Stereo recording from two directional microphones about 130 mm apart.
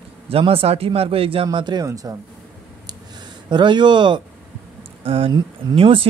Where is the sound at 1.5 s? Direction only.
35° right (ahead or behind).